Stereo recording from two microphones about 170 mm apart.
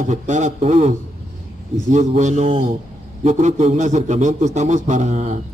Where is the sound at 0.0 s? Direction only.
45° right (ahead or behind).